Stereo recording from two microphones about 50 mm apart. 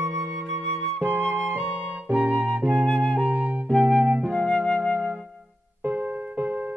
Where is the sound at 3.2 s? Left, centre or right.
Right.